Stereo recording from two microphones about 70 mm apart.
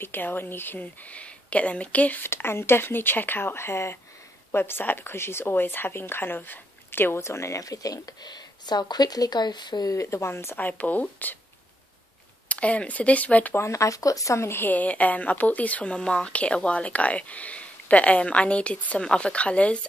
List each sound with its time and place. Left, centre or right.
0.0 s speech: left
2.2 s a woman's voice: left
9.9 s a woman's voice: left
10.7 s speech: left
12.4 s speech: centre
13.6 s speech: left
14.7 s speech: left